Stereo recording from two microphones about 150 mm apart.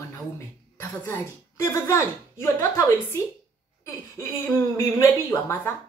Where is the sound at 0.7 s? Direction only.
15° left (ahead or behind).